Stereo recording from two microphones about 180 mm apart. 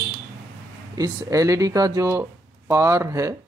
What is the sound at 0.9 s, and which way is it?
Speech, 20° right (ahead or behind).